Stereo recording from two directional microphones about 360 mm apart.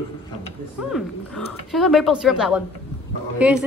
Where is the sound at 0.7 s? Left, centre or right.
Centre.